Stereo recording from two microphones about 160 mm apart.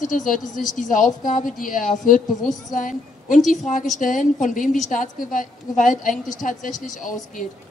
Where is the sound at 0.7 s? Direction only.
55° left (ahead or behind).